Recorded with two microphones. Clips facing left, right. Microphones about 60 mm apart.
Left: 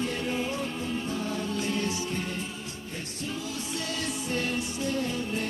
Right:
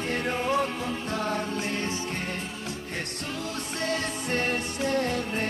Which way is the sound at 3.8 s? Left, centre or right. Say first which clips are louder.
Right 6 dB; right.